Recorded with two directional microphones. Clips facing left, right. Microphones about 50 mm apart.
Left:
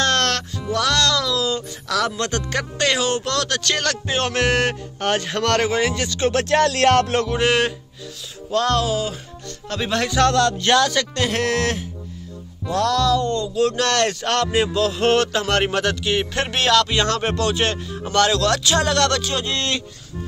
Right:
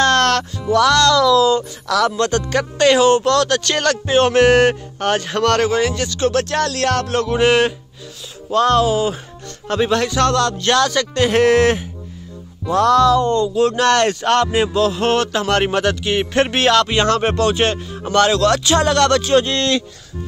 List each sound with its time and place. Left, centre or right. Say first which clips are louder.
0.0 s speech: right 5 dB; centre; by 7.2 s left
7.2 s speech: right 4 dB; centre
9.8 s speech: even; centre
11.1 s a man's voice: right 11 dB; centre
19.4 s speech: right 5 dB; right